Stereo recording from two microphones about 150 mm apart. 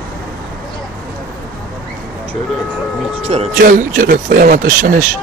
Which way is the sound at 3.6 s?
60° right (ahead or behind).